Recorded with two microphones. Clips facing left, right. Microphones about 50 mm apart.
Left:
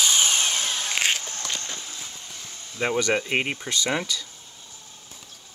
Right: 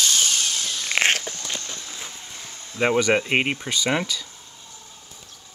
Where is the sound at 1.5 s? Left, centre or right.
Left.